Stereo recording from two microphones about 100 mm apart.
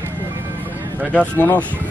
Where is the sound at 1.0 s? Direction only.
15° right (ahead or behind).